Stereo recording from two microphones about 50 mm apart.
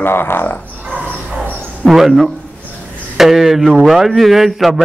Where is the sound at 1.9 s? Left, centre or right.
Centre.